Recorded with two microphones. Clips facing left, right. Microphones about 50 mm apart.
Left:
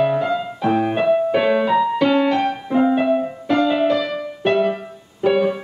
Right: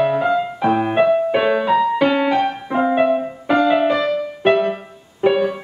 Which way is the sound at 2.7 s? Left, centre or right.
Centre.